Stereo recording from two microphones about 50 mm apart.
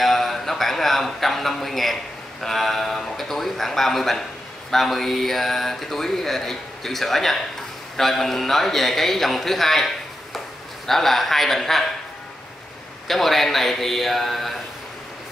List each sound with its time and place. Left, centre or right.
0.0 s a man's voice: centre
13.1 s speech: centre